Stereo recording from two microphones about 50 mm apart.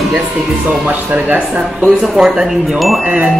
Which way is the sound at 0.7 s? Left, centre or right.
Right.